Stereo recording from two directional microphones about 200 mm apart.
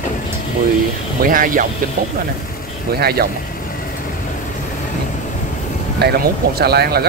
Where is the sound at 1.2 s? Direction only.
45° right (ahead or behind).